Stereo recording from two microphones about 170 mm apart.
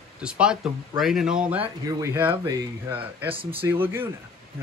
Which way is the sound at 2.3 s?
20° right (ahead or behind).